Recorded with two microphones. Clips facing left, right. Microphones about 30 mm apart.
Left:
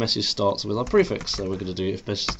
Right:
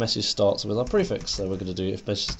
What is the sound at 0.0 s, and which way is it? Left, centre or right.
Speech, centre.